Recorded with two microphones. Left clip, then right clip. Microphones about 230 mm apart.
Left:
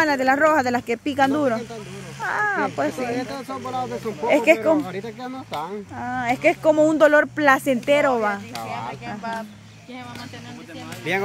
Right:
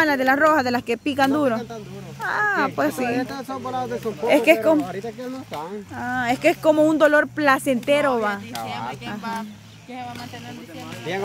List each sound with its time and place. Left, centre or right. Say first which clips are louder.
0.0 s speech: even; centre
3.1 s speech: right 2 dB; centre
5.9 s speech: right 1 dB; centre
11.1 s speech: left 4 dB; left